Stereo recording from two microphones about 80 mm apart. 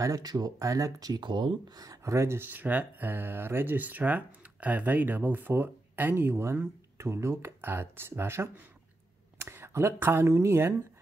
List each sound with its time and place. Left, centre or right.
0.0 s speech: right
1.2 s speech: right
1.8 s speech: right
9.5 s speech: right